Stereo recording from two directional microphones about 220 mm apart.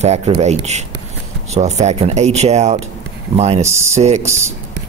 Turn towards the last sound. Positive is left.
turn(degrees=-10)  # may be behind; listen again after turning